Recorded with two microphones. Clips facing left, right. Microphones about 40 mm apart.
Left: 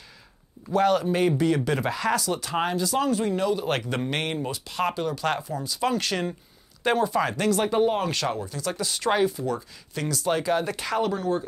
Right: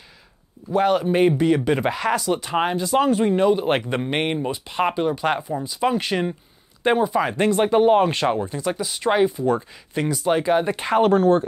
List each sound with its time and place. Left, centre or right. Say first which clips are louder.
0.7 s speech: right 3 dB; centre
7.3 s speech: right 7 dB; right
9.5 s speech: right 8 dB; right
11.0 s speech: right 10 dB; right